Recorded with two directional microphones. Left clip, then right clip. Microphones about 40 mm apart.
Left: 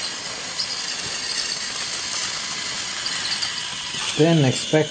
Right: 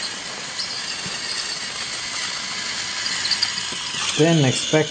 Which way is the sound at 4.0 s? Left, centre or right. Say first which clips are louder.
Even; right.